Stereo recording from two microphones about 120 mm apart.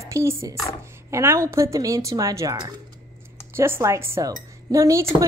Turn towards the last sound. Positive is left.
turn(degrees=-25)  # may be behind; listen again after turning